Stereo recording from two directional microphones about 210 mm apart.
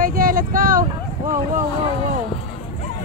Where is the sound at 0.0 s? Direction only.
40° right (ahead or behind).